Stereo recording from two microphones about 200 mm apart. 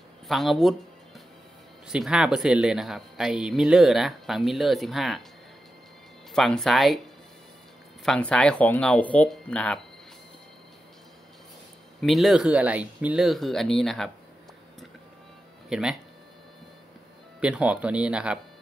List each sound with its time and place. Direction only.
0.3 s speech: centre (ahead or behind)
1.9 s speech: centre (ahead or behind)
6.3 s speech: centre (ahead or behind)
8.0 s speech: 5° left (ahead or behind)
12.0 s speech: centre (ahead or behind)
15.7 s speech: 5° right (ahead or behind)
17.4 s speech: 5° right (ahead or behind)